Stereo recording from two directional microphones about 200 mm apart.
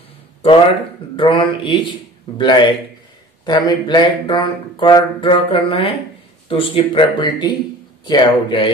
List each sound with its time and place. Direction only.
1.1 s speech: 25° left (ahead or behind)